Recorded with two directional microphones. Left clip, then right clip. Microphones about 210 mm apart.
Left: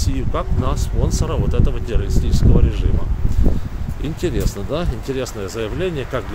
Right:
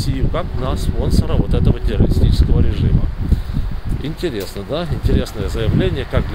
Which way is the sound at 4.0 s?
Centre (ahead or behind).